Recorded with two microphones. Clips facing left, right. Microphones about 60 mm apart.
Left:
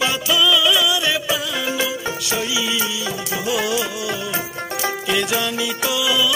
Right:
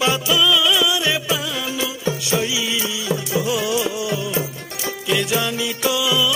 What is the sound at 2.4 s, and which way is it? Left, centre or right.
Music, centre.